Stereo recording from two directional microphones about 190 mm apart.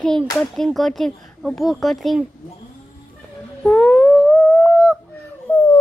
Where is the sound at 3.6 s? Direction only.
5° left (ahead or behind).